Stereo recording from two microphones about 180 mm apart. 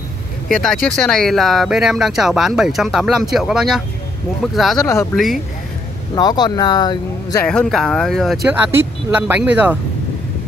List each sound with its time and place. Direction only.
0.5 s speech: 5° left (ahead or behind)
6.1 s speech: 20° left (ahead or behind)
7.4 s speech: 5° left (ahead or behind)
8.5 s speech: 10° right (ahead or behind)